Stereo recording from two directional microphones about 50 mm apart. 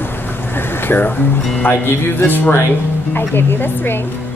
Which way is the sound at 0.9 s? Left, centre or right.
Left.